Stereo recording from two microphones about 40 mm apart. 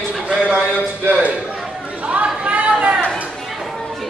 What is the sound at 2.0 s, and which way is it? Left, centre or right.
Chatter, right.